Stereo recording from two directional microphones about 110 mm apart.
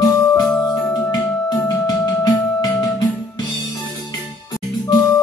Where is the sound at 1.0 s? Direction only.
35° left (ahead or behind).